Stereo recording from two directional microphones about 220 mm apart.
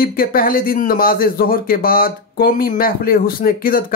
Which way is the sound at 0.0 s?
40° left (ahead or behind).